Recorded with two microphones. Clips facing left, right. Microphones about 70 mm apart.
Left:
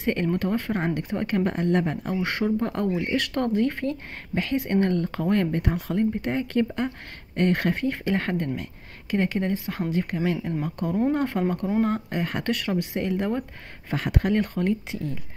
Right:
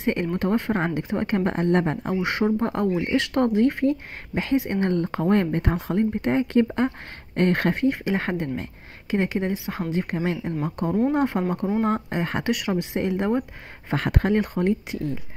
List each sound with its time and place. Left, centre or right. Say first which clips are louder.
0.0 s speech: right 1 dB; right
2.0 s speech: right 2 dB; centre; by 7.7 s right
7.7 s speech: right 3 dB; right
12.4 s speech: right 3 dB; centre
12.7 s speech: right 1 dB; right
13.9 s speech: right 2 dB; right
14.2 s speech: right 2 dB; right